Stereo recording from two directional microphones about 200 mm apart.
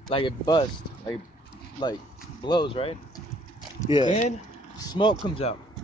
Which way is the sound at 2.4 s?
20° left (ahead or behind).